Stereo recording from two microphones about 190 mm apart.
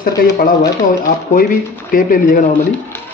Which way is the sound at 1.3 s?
45° left (ahead or behind).